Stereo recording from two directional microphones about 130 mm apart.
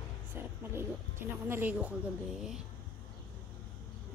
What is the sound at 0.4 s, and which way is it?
Speech, 15° right (ahead or behind).